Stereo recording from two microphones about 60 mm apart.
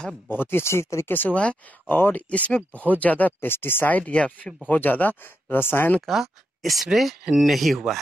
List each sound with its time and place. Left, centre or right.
0.3 s speech: left
1.1 s speech: left
2.2 s speech: left
3.3 s speech: left
3.8 s speech: left
4.6 s speech: left
6.0 s speech: centre